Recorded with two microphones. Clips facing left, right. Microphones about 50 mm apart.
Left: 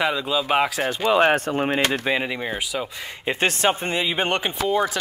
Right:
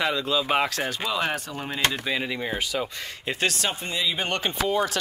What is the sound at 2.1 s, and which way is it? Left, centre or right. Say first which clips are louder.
A man's voice: left 4 dB; centre.